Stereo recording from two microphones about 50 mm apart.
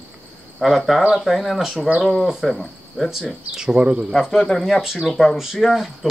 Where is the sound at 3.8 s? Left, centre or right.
Right.